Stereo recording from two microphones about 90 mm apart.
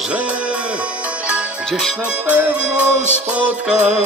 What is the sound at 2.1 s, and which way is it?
Music, 15° right (ahead or behind).